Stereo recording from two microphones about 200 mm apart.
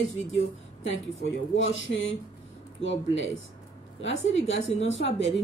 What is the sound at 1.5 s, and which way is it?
A man's voice, 70° left (ahead or behind).